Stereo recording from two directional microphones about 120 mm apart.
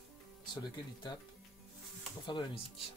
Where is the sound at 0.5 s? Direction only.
35° left (ahead or behind).